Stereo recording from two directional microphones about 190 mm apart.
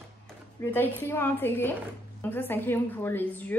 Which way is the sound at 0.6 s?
10° left (ahead or behind).